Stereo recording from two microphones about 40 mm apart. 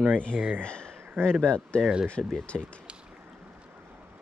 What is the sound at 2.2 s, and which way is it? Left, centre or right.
Speech, centre.